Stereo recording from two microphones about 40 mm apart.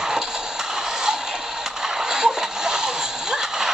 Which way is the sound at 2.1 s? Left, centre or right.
Centre.